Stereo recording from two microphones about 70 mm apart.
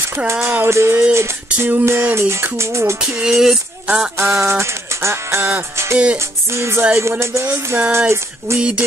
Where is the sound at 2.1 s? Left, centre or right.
Right.